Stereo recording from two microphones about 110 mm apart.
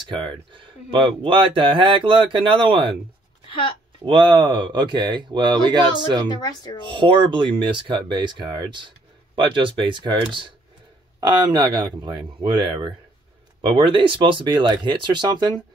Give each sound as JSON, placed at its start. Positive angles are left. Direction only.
{"t": 0.0, "sound": "speech", "side_deg": -45}
{"t": 3.4, "sound": "a woman's voice", "side_deg": 55}
{"t": 4.0, "sound": "speech", "side_deg": -45}
{"t": 6.2, "sound": "speech", "side_deg": 40}
{"t": 6.8, "sound": "speech", "side_deg": -50}